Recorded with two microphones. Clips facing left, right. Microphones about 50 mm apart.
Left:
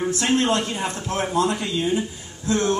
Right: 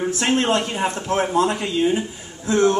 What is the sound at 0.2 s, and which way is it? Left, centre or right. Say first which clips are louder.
Speech: right 2 dB; right.